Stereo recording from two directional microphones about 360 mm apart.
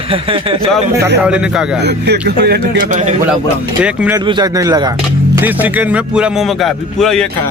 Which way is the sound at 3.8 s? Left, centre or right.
Centre.